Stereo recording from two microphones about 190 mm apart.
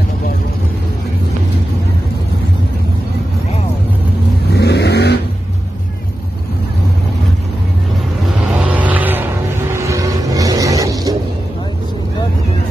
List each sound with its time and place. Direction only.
4.5 s vehicle: 60° left (ahead or behind)
8.7 s vehicle: 10° right (ahead or behind)